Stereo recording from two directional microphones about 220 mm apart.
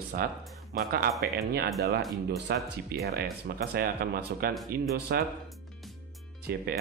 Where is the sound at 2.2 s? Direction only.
50° right (ahead or behind).